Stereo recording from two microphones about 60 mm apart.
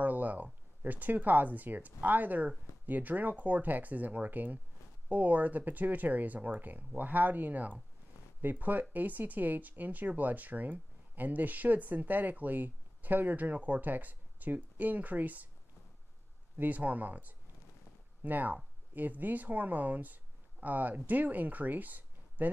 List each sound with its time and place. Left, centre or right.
0.0 s speech: right
16.5 s speech: right